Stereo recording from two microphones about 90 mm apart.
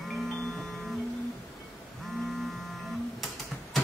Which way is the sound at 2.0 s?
Centre (ahead or behind).